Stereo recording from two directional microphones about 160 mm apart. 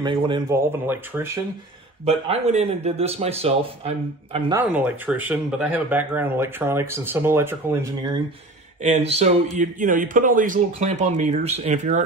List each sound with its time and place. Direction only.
0.0 s speech: 30° right (ahead or behind)
0.5 s speech: 15° right (ahead or behind)
2.0 s a man's voice: 40° right (ahead or behind)
4.6 s speech: 10° right (ahead or behind)
8.8 s speech: 45° right (ahead or behind)
9.6 s speech: 55° right (ahead or behind)